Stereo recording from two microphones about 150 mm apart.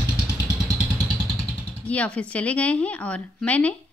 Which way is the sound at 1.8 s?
10° left (ahead or behind).